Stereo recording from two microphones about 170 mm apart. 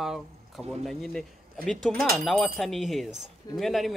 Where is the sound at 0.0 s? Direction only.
Centre (ahead or behind).